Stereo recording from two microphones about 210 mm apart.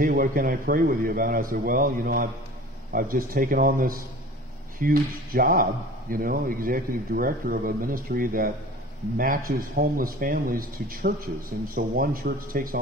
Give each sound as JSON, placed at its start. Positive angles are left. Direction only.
{"t": 0.0, "sound": "speech", "side_deg": -45}